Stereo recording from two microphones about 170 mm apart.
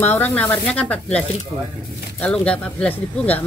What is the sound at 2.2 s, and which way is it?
Speech, 5° left (ahead or behind).